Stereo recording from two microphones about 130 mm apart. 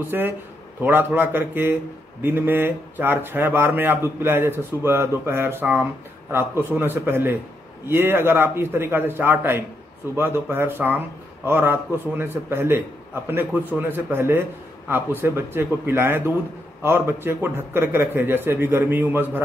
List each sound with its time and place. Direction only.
0.1 s speech: 15° right (ahead or behind)